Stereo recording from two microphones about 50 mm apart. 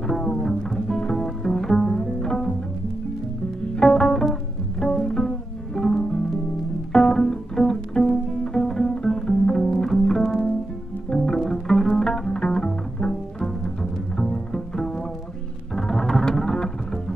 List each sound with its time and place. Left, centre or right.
0.0 s music: centre
3.7 s music: centre
4.7 s pizzicato: centre
6.9 s music: centre
11.1 s pizzicato: centre
12.0 s bowed string instrument: centre
15.7 s music: centre